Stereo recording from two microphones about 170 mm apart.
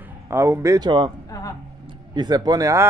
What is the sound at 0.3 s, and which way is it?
Speech, 15° right (ahead or behind).